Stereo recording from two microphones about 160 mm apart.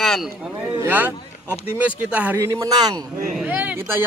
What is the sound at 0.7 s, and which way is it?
Speech, 10° right (ahead or behind).